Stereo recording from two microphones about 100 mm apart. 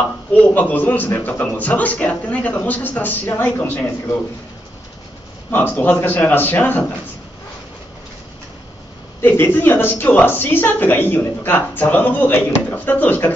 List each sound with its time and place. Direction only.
0.3 s a man's voice: 15° left (ahead or behind)
5.5 s a man's voice: 20° left (ahead or behind)
9.2 s a woman's voice: 20° left (ahead or behind)